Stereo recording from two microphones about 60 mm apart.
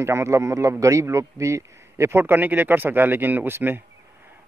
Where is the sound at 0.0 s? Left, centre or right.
Right.